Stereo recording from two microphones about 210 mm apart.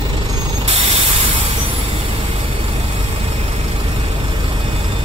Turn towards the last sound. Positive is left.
turn(degrees=-25)  # may be behind; listen again after turning